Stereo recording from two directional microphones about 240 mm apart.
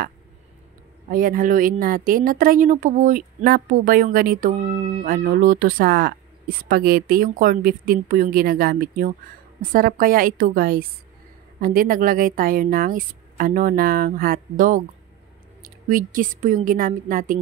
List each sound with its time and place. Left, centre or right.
1.1 s a woman's voice: right